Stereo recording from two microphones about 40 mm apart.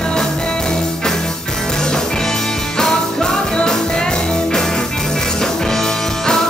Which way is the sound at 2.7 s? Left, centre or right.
Centre.